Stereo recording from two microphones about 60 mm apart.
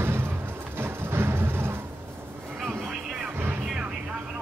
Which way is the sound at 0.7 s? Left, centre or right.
Right.